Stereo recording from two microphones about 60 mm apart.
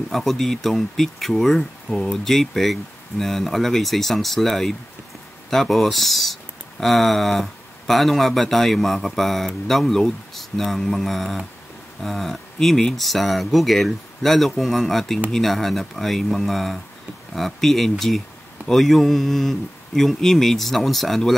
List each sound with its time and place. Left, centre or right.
0.1 s speech: centre
1.9 s speech: left
2.2 s speech: centre